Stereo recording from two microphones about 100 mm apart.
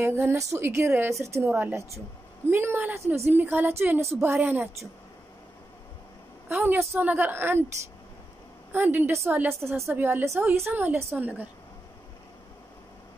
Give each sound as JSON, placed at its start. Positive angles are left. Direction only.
{"t": 0.0, "sound": "a woman's voice", "side_deg": -20}
{"t": 6.5, "sound": "a woman's voice", "side_deg": -20}
{"t": 8.7, "sound": "a woman's voice", "side_deg": -20}